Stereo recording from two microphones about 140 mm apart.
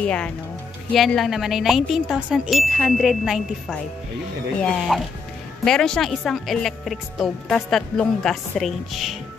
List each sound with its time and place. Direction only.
0.0 s a woman's voice: 10° left (ahead or behind)
4.7 s a woman's voice: centre (ahead or behind)